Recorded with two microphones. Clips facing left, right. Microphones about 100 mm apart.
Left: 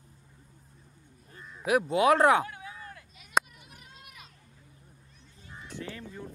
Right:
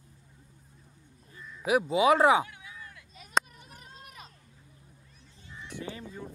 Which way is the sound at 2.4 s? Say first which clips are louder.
Left 3 dB; 40° left (ahead or behind).